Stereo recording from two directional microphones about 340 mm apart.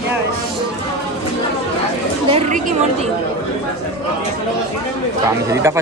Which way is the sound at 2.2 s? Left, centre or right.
Centre.